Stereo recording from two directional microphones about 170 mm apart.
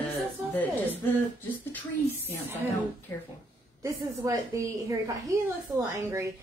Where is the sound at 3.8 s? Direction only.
15° right (ahead or behind).